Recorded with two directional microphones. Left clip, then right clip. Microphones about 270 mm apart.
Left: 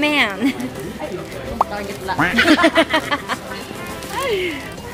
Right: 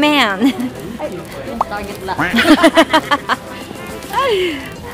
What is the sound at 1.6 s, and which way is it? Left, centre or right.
Music, centre.